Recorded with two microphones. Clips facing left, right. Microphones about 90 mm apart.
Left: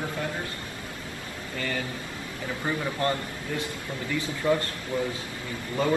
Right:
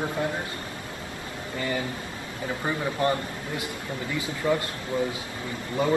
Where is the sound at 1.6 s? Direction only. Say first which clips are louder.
Right 2 dB; 20° right (ahead or behind).